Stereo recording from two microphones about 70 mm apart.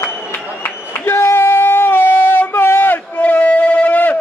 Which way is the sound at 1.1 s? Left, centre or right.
Left.